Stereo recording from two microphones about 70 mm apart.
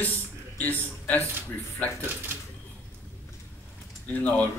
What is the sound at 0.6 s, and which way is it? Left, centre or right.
Speech, left.